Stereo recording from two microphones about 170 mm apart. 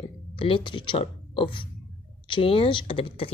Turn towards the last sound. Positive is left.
turn(degrees=35)  # may be behind; listen again after turning